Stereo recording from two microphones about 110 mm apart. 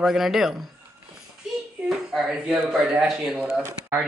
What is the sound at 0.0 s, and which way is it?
Speech, 5° right (ahead or behind).